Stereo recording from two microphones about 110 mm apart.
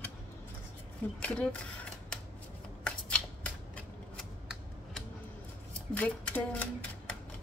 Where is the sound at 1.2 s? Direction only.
10° left (ahead or behind).